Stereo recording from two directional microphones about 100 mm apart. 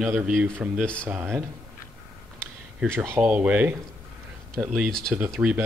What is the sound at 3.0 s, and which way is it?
Speech, 10° right (ahead or behind).